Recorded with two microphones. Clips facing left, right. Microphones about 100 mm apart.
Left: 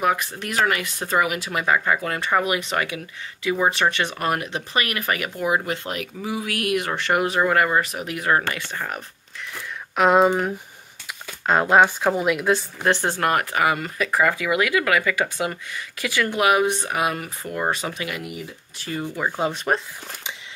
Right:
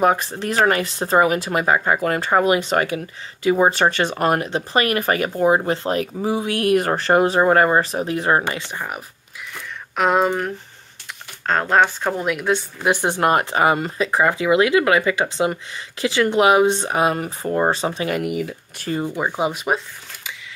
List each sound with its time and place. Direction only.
0.0 s speech: 35° right (ahead or behind); by 9.0 s 10° right (ahead or behind)
9.5 s speech: centre (ahead or behind)
12.8 s speech: 15° right (ahead or behind); by 18.1 s 30° right (ahead or behind)
18.1 s speech: 55° right (ahead or behind)
18.9 s speech: 25° right (ahead or behind)